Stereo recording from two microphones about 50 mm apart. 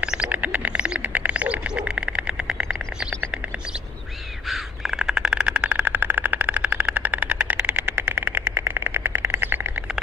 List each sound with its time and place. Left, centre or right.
0.0 s bird: right
1.0 s bird: right; by 3.1 s centre
4.5 s crow: centre; by 8.5 s right
8.5 s vehicle: right